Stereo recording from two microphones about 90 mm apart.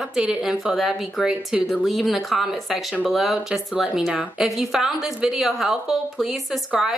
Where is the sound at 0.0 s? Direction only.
10° right (ahead or behind).